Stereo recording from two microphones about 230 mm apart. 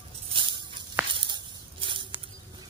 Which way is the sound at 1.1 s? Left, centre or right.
Right.